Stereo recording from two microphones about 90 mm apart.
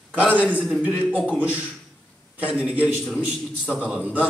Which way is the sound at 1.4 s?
15° right (ahead or behind).